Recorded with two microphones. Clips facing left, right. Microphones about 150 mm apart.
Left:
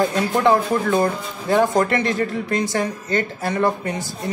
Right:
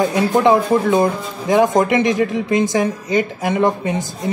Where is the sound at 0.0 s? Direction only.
20° right (ahead or behind).